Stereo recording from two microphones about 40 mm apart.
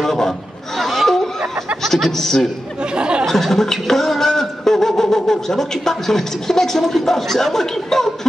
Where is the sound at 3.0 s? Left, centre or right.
Right.